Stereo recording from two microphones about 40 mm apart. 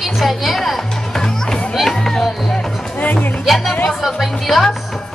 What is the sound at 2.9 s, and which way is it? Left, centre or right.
Music, left.